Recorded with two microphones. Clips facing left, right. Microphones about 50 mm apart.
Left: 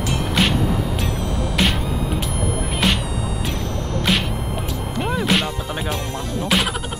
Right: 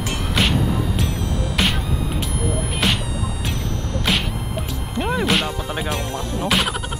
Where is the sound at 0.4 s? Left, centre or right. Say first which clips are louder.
Even; centre.